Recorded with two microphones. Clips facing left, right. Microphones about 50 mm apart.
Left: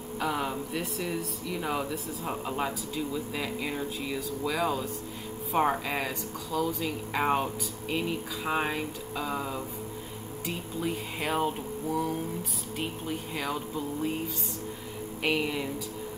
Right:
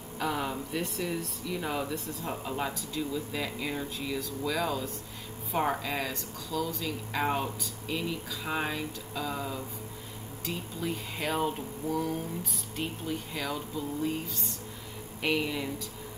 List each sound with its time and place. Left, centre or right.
0.2 s speech: centre
13.3 s speech: centre
15.2 s speech: centre